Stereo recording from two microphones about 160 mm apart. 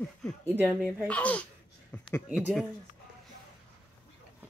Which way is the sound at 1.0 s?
10° left (ahead or behind).